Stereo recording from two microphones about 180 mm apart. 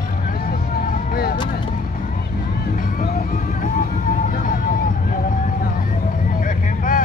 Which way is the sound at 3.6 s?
45° left (ahead or behind).